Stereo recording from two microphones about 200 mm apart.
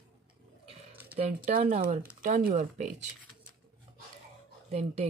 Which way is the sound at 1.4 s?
45° right (ahead or behind).